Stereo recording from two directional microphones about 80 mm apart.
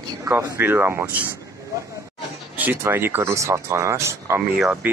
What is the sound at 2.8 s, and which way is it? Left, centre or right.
Speech, right.